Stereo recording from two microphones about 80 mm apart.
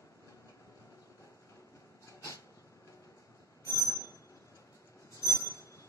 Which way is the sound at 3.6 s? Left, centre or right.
Left.